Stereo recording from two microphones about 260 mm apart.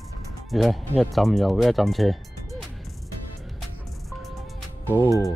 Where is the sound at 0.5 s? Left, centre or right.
Centre.